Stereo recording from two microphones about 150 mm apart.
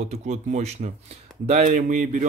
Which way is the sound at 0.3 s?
50° right (ahead or behind).